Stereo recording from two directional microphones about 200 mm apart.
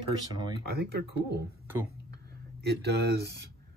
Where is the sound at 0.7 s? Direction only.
50° right (ahead or behind).